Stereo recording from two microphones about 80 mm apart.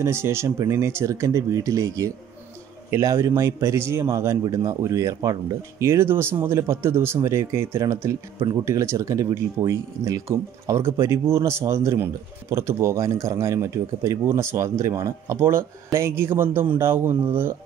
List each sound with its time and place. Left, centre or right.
0.0 s speech: right
3.2 s speech: right